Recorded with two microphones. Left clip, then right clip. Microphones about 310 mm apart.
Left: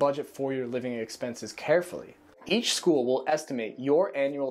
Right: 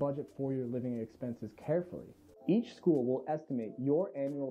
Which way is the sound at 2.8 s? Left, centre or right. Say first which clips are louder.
Left 5 dB; left.